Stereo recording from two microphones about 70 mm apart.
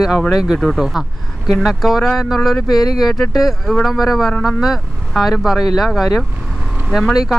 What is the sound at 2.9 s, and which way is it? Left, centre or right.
A man's voice, centre.